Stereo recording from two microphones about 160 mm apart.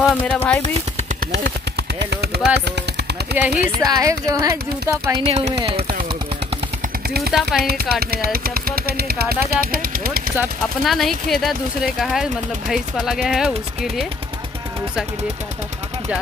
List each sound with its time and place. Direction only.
0.1 s speech: 5° left (ahead or behind)
1.3 s speech: 90° right
3.3 s speech: 10° right (ahead or behind)
5.2 s speech: 40° right (ahead or behind)
7.3 s speech: 5° right (ahead or behind)
8.0 s speech: 70° right (ahead or behind)
10.8 s speech: centre (ahead or behind)